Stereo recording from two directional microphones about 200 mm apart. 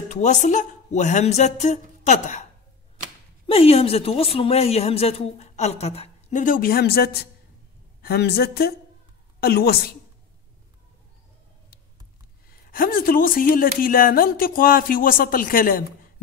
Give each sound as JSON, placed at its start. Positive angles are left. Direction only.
{"t": 0.1, "sound": "a woman's voice", "side_deg": 35}
{"t": 3.4, "sound": "a woman's voice", "side_deg": 30}
{"t": 12.4, "sound": "speech", "side_deg": 45}